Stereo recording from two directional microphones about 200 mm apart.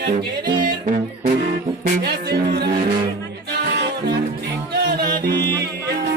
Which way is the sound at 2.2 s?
55° right (ahead or behind).